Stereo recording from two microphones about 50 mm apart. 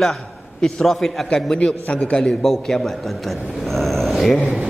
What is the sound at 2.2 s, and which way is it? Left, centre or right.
A man's voice, centre.